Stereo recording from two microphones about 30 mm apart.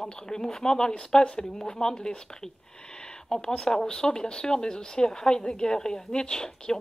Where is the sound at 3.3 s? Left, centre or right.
Left.